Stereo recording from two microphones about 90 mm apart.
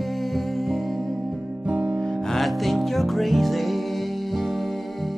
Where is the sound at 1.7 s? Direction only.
15° right (ahead or behind).